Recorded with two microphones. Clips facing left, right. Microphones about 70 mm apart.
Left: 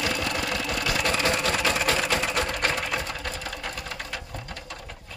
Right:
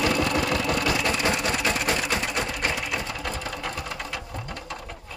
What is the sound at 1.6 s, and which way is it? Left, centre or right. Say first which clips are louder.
Sewing machine: left 1 dB; centre.